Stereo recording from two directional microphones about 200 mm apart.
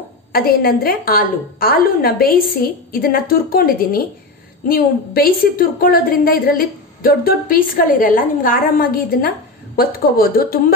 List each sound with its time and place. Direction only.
0.3 s a woman's voice: 50° left (ahead or behind)